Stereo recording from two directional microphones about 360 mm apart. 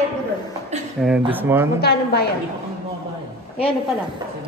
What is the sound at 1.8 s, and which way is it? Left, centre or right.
Speech, left.